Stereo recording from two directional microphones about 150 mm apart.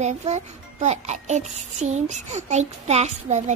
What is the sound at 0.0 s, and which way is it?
A child's voice, 50° right (ahead or behind).